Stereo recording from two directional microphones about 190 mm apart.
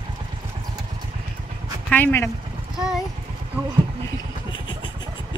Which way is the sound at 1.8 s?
10° left (ahead or behind).